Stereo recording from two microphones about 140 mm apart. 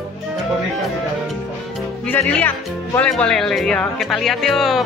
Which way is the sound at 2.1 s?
15° left (ahead or behind).